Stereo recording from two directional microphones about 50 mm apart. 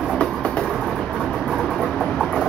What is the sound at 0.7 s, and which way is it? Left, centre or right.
Vehicle, centre.